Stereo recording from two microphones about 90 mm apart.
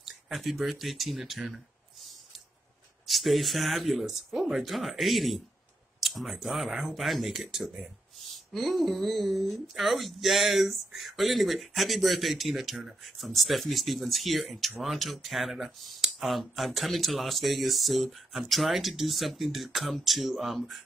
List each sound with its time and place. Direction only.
0.0 s speech: centre (ahead or behind)
3.1 s speech: centre (ahead or behind)